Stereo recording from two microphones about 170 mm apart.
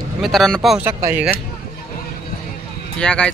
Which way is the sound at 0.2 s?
Centre (ahead or behind).